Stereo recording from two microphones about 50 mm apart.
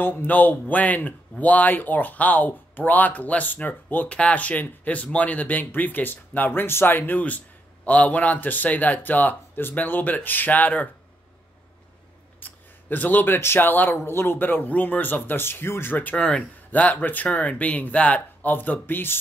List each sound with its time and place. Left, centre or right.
0.0 s speech: left
4.1 s speech: left
12.4 s a sound: left
13.6 s speech: left
13.9 s speech: left
16.2 s speech: centre; by 19.1 s left